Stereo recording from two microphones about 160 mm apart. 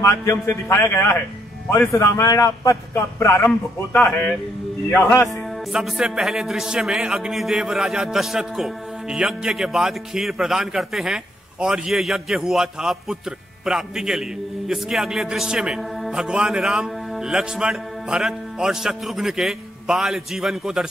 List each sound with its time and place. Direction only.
0.0 s a man's voice: 20° left (ahead or behind)
5.7 s a man's voice: 5° right (ahead or behind)